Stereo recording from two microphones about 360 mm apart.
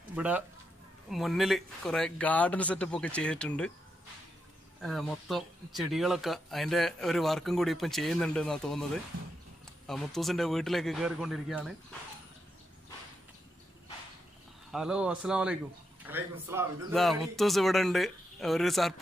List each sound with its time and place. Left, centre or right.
0.1 s speech: centre
4.8 s speech: centre
14.7 s speech: centre